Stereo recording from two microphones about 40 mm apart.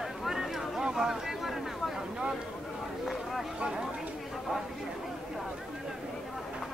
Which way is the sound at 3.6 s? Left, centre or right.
Right.